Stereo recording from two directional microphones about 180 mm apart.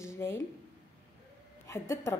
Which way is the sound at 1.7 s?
15° left (ahead or behind).